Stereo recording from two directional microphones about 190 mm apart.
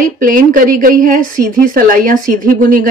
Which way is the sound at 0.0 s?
45° right (ahead or behind).